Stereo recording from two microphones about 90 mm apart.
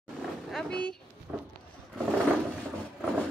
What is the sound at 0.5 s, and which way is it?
Roaring cats, 5° left (ahead or behind).